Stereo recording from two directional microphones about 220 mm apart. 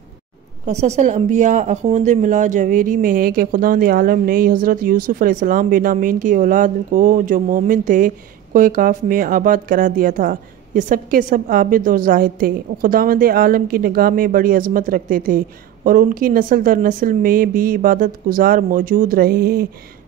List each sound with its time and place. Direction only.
0.7 s speech: 30° right (ahead or behind)